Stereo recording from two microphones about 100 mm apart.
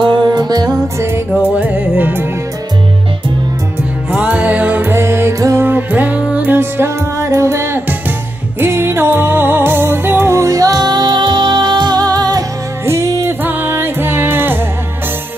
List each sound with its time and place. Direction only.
0.0 s music: 50° right (ahead or behind)
0.9 s music: 25° right (ahead or behind)
4.1 s music: 15° right (ahead or behind); by 12.4 s 40° right (ahead or behind)
12.8 s music: 30° right (ahead or behind)
13.4 s music: 20° right (ahead or behind)